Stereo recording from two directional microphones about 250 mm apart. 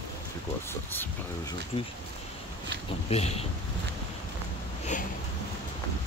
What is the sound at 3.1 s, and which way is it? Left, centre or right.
Speech, left.